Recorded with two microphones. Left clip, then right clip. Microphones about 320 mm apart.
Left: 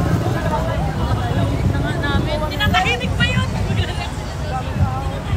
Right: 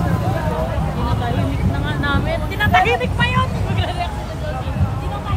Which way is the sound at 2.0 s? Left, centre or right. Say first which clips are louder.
Right 2 dB; centre.